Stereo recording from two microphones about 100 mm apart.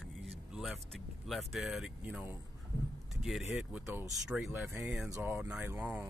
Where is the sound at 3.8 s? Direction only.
25° right (ahead or behind).